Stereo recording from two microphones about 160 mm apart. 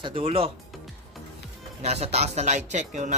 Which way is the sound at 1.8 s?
40° right (ahead or behind).